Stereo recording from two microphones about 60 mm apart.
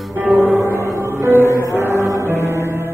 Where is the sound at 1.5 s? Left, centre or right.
Right.